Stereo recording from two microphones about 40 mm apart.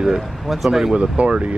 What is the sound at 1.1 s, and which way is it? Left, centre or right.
Speech, right.